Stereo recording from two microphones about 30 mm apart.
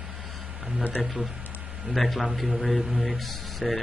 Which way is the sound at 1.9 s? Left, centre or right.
Centre.